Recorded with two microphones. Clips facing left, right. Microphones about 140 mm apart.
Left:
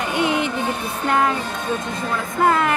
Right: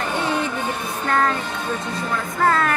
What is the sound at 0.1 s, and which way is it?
Music, 15° left (ahead or behind).